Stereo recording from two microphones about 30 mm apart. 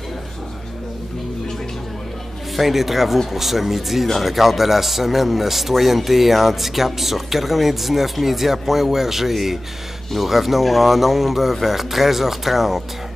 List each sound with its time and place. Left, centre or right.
2.5 s speech: centre